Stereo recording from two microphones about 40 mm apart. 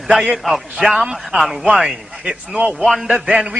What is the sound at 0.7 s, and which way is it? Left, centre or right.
Speech, right.